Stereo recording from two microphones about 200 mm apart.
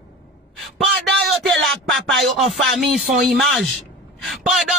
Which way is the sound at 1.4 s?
Centre (ahead or behind).